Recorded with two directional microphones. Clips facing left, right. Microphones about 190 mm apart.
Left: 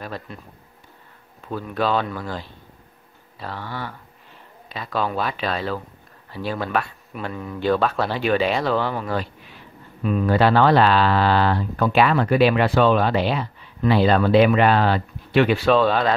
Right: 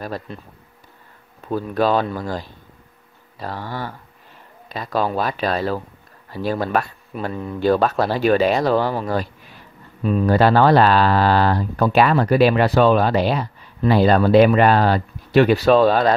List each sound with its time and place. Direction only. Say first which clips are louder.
1.5 s speech: right 4 dB; 40° right (ahead or behind)